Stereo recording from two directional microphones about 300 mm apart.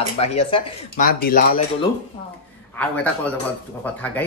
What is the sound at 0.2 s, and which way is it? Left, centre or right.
Speech, centre.